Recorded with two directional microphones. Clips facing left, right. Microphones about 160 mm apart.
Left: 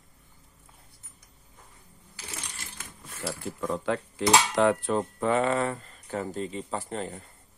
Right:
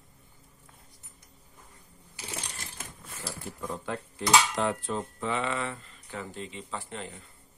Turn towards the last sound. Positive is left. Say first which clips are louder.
# left 6 dB
turn(degrees=40)  # may be behind; listen again after turning